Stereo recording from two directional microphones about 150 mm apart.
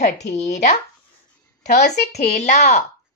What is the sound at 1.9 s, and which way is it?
Speech, 45° left (ahead or behind).